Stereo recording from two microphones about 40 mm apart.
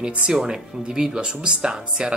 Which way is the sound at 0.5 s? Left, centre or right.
Centre.